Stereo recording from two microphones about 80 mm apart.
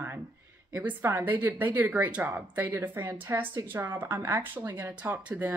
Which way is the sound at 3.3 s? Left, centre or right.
Right.